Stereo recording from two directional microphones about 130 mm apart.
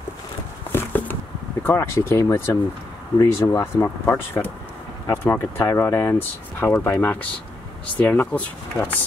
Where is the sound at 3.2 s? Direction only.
30° left (ahead or behind).